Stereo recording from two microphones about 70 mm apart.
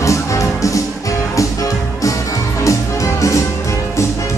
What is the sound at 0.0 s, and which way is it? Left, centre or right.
Music, left.